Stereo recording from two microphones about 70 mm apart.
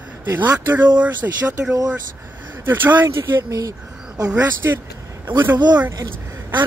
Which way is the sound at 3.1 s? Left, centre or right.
Right.